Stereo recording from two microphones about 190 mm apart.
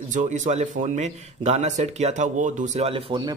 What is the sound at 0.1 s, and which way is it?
Speech, 40° right (ahead or behind).